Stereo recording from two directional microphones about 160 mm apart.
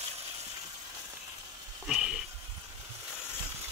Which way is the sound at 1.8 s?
5° right (ahead or behind).